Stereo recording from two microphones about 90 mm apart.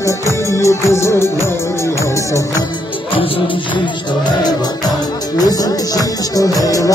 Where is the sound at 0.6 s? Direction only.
35° left (ahead or behind).